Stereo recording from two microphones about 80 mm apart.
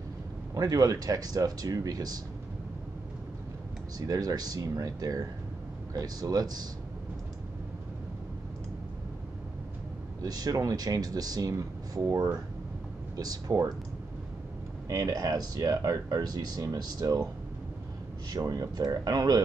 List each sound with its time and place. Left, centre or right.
0.6 s speech: right
4.0 s speech: right
10.2 s speech: right
13.1 s speech: right
14.9 s speech: right
18.3 s speech: right